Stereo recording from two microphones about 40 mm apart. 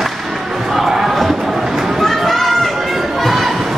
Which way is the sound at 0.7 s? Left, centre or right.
Centre.